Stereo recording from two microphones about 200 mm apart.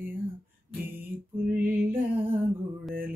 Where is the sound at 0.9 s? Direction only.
10° right (ahead or behind).